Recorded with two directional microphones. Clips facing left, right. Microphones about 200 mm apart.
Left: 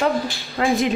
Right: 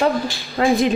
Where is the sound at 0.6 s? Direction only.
35° right (ahead or behind).